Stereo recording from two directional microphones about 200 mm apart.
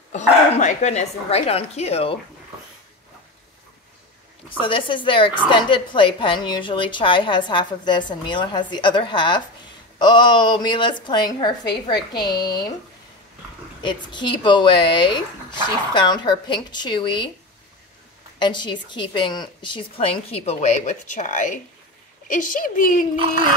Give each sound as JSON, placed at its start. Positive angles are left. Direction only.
{"t": 0.1, "sound": "speech", "side_deg": 35}
{"t": 4.5, "sound": "a woman's voice", "side_deg": 25}
{"t": 13.8, "sound": "a woman's voice", "side_deg": 25}
{"t": 18.4, "sound": "a woman's voice", "side_deg": 20}